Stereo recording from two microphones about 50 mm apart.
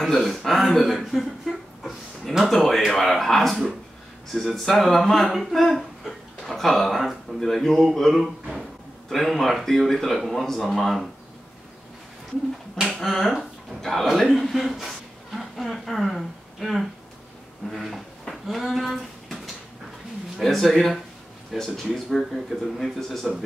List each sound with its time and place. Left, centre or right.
0.0 s speech: centre
12.8 s speech: centre